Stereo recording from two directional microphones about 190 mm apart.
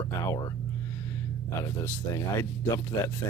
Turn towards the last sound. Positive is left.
turn(degrees=20)  # may be behind; listen again after turning